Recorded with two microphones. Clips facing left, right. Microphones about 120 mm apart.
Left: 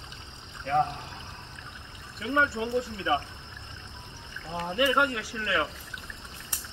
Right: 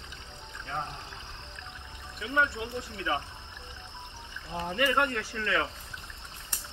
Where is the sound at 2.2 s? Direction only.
30° left (ahead or behind).